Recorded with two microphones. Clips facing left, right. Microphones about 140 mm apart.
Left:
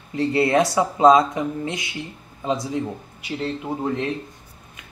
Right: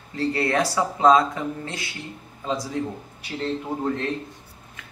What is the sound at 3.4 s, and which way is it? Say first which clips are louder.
Speech: even; 10° left (ahead or behind).